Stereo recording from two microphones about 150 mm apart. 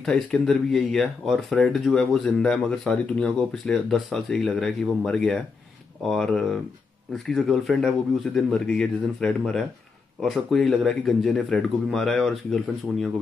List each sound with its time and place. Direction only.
0.0 s speech: 5° left (ahead or behind)